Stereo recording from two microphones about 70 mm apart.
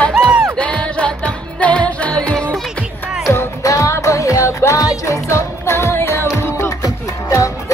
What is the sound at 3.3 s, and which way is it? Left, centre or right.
Music, left.